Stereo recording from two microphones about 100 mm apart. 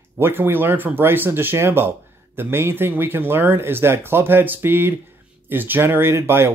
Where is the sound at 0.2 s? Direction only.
20° right (ahead or behind).